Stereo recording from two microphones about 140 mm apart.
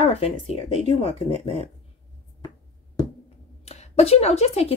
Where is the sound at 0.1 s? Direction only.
45° left (ahead or behind).